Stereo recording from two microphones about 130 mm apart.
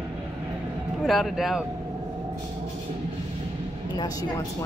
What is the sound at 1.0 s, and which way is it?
Speech, centre (ahead or behind).